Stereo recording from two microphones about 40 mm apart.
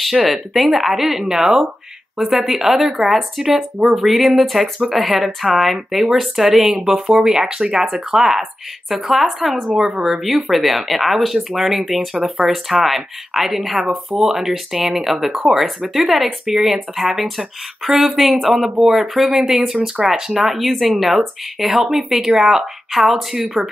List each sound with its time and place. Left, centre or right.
0.0 s speech: centre
10.2 s speech: centre
16.3 s speech: centre
16.6 s speech: centre